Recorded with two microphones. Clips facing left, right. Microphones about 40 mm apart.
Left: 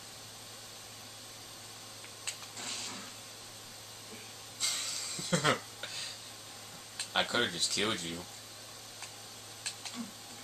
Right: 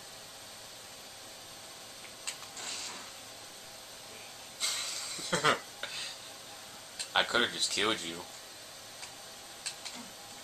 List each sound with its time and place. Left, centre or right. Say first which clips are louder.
2.2 s a sound: even; centre
4.6 s dishes: right 1 dB; centre
7.1 s speech: right 2 dB; centre